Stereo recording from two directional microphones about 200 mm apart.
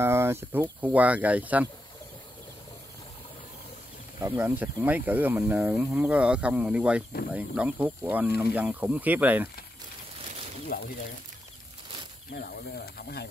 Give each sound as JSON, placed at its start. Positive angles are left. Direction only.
{"t": 0.0, "sound": "speech", "side_deg": -10}
{"t": 4.2, "sound": "speech", "side_deg": -10}
{"t": 10.7, "sound": "speech", "side_deg": 50}
{"t": 12.4, "sound": "speech", "side_deg": 50}